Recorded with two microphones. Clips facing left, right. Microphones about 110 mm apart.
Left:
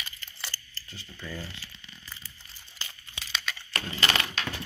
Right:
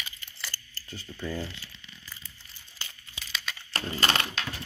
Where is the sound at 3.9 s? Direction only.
35° right (ahead or behind).